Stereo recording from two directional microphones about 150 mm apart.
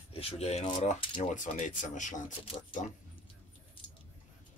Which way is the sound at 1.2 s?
55° left (ahead or behind).